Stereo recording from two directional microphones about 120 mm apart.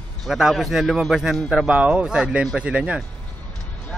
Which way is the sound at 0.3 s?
5° right (ahead or behind).